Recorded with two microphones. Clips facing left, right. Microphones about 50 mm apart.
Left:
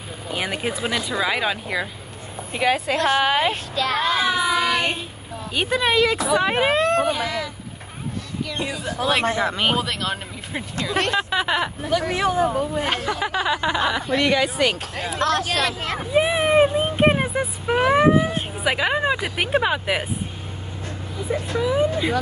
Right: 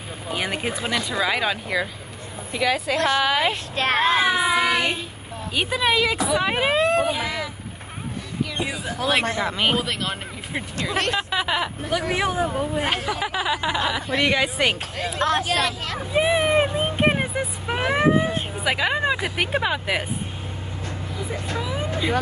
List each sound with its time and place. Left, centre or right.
0.3 s speech: centre
0.8 s speech: centre
2.5 s a woman's voice: left
3.4 s speech: right
5.5 s speech: centre
8.5 s speech: centre
11.9 s speech: centre
14.1 s speech: centre
15.6 s a woman's voice: left
16.1 s vehicle: centre
18.6 s speech: centre
21.3 s speech: centre